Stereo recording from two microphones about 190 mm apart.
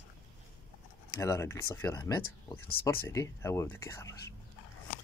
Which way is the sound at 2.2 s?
50° left (ahead or behind).